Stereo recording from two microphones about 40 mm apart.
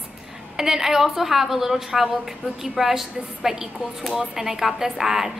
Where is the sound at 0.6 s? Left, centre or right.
Centre.